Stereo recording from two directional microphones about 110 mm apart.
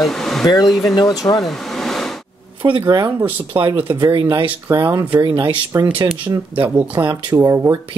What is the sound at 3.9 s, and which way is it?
Speech, 45° right (ahead or behind).